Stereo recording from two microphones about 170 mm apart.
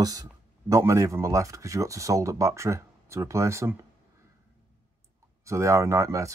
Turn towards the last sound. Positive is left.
turn(degrees=-15)  # may be behind; listen again after turning